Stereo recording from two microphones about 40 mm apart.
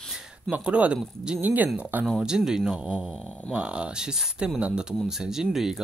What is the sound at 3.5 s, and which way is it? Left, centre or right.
Speech, right.